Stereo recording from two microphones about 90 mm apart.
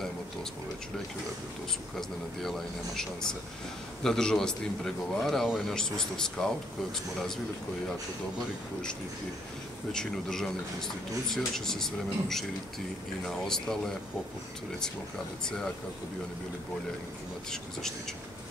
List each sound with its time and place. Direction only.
2.0 s a man's voice: 5° left (ahead or behind)
9.9 s a man's voice: 5° left (ahead or behind)